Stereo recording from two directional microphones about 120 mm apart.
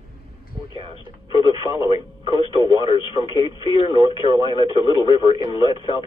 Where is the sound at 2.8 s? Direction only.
45° left (ahead or behind).